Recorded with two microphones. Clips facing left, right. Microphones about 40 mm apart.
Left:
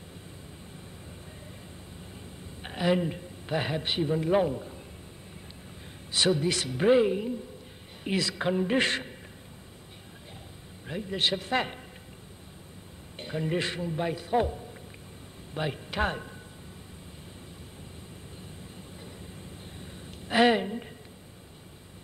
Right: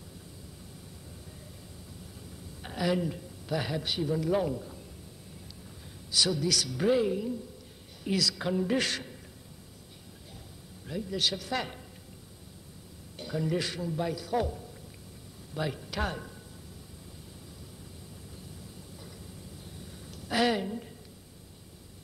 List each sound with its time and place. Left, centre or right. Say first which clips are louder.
2.6 s a man's voice: left 3 dB; left
6.1 s a man's voice: left 3 dB; left
10.9 s a man's voice: left 2 dB; left
13.2 s a man's voice: left 1 dB; left
19.8 s a sound: left 2 dB; left